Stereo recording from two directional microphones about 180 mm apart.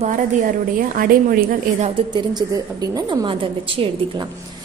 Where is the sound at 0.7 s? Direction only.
55° right (ahead or behind).